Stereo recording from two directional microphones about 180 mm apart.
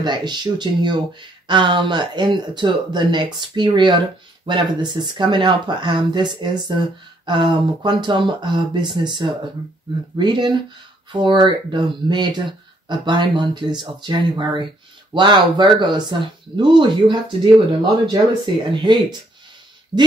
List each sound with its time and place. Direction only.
0.0 s speech: 25° right (ahead or behind)